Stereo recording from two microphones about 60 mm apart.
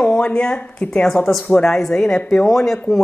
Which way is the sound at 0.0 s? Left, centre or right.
Centre.